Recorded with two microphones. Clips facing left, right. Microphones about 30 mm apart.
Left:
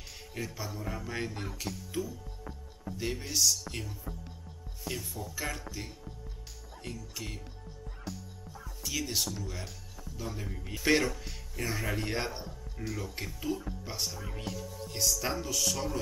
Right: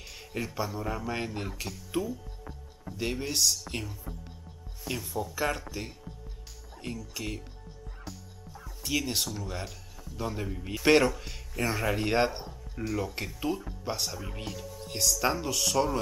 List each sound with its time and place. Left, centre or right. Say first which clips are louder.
0.3 s speech: right 6 dB; centre
1.9 s speech: right 6 dB; right
3.0 s speech: right 2 dB; centre
4.8 s speech: right 2 dB; centre
5.2 s speech: right 6 dB; right
7.2 s speech: right 6 dB; centre
8.8 s speech: right 3 dB; centre
10.1 s speech: right 6 dB; right
11.2 s music: right 4 dB; centre
11.6 s speech: right 5 dB; right
15.4 s speech: right 5 dB; right